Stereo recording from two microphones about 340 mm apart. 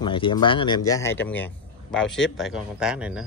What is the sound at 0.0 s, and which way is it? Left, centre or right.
Speech, centre.